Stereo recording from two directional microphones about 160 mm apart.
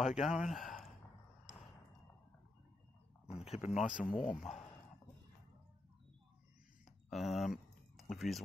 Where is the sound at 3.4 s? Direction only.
40° left (ahead or behind).